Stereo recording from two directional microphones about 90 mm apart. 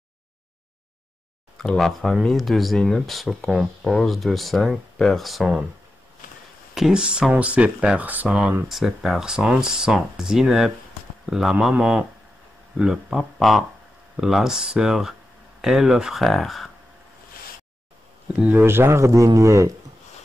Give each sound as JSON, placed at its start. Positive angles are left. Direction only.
{"t": 1.6, "sound": "speech", "side_deg": 5}
{"t": 6.7, "sound": "speech", "side_deg": -5}
{"t": 8.6, "sound": "speech", "side_deg": 0}
{"t": 18.3, "sound": "speech", "side_deg": -15}